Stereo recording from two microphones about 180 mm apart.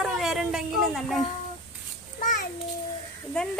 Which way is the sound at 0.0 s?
5° right (ahead or behind).